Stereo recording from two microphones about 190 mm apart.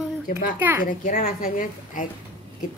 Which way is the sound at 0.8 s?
45° left (ahead or behind).